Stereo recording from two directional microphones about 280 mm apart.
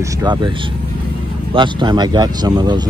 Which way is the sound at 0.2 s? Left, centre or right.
Centre.